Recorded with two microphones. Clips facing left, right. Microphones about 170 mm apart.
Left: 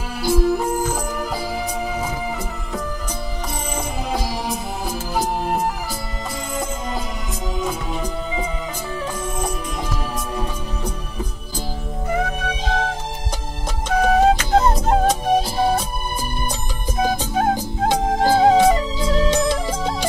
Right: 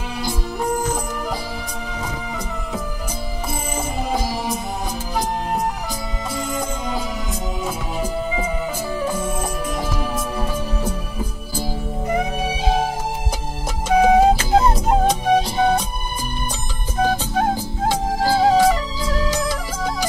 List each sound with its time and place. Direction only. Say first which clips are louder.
0.2 s music: left 8 dB; 5° left (ahead or behind)
4.1 s music: right 1 dB; centre (ahead or behind)
7.6 s music: left 1 dB; 5° right (ahead or behind)
17.0 s music: right 1 dB; 15° left (ahead or behind)